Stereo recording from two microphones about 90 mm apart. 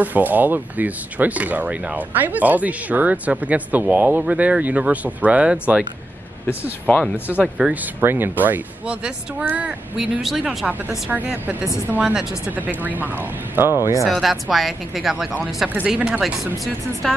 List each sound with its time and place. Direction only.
0.0 s speech: 20° right (ahead or behind)
6.9 s speech: 10° left (ahead or behind)
7.4 s speech: 5° right (ahead or behind)
7.7 s speech: 20° right (ahead or behind)
10.2 s speech: 5° right (ahead or behind)
11.1 s speech: 20° right (ahead or behind)
12.0 s speech: 10° right (ahead or behind)
12.4 s speech: 20° right (ahead or behind)
14.0 s speech: centre (ahead or behind)
15.7 s speech: 15° right (ahead or behind); by 17.1 s centre (ahead or behind)